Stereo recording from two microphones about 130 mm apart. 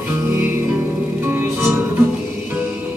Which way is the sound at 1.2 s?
15° right (ahead or behind).